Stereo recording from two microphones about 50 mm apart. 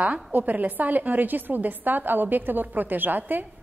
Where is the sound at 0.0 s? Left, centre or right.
Right.